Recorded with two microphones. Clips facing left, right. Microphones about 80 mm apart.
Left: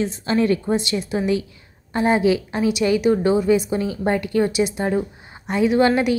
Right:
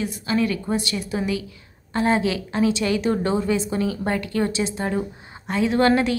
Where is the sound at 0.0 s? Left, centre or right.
Left.